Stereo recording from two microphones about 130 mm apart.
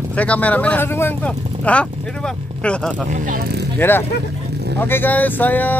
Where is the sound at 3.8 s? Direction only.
15° left (ahead or behind).